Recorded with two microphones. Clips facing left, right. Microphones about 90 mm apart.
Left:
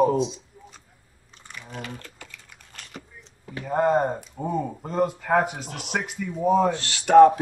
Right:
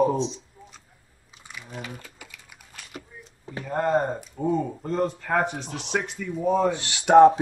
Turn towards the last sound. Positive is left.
turn(degrees=-20)  # may be behind; listen again after turning